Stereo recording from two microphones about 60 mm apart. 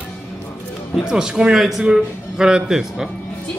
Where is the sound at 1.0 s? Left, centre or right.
Centre.